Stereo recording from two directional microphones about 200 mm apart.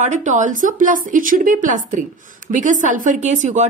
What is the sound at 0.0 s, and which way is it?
A woman's voice, 35° right (ahead or behind).